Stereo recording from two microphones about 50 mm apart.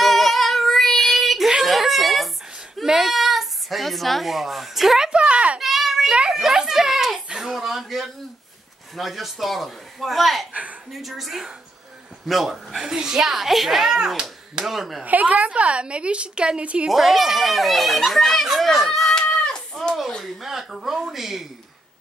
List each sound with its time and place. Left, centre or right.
0.0 s child singing: centre
1.6 s a sound: centre
2.8 s speech: centre
5.1 s children playing: right
5.6 s child singing: centre
6.3 s a sound: centre
7.2 s a child's voice: centre
10.5 s a woman's voice: right
10.9 s a child's voice: centre
15.0 s a woman's voice: right
16.9 s a child's voice: centre
19.1 s cat: centre
19.7 s a sound: centre
20.3 s speech: centre